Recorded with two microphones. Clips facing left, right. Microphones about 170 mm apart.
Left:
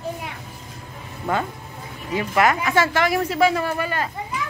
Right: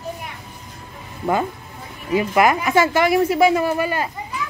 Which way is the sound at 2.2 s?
10° right (ahead or behind).